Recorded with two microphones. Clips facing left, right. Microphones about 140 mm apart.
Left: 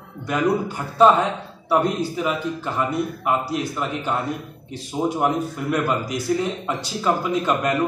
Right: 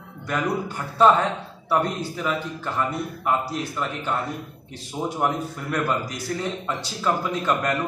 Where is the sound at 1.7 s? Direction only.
15° left (ahead or behind).